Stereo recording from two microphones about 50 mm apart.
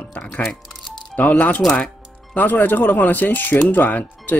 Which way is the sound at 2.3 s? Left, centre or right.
Left.